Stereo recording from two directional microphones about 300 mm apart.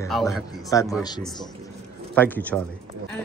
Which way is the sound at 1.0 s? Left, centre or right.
Centre.